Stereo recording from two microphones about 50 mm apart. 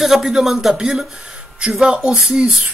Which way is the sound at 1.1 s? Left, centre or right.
Centre.